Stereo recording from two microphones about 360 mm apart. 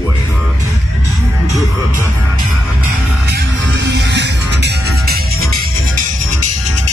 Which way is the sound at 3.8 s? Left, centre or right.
Right.